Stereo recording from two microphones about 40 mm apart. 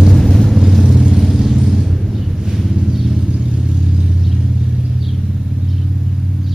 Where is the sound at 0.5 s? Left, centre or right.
Centre.